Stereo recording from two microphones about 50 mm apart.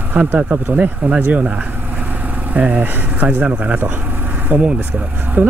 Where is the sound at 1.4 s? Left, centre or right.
Right.